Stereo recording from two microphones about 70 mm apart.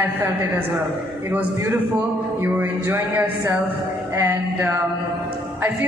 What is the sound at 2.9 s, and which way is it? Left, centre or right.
A man's voice, right.